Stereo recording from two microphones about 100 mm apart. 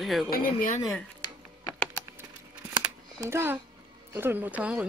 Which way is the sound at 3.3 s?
25° right (ahead or behind).